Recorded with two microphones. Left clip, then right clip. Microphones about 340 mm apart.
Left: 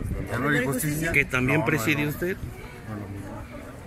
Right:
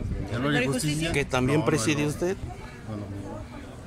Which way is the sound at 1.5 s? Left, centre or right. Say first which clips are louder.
Left 1 dB; centre.